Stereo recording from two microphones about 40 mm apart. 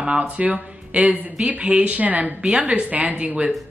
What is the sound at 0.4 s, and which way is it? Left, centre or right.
Speech, right.